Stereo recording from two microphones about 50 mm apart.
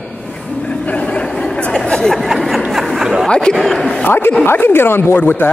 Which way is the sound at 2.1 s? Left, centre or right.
Centre.